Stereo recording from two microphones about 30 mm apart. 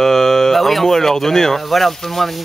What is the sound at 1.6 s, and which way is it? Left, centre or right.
Speech, centre.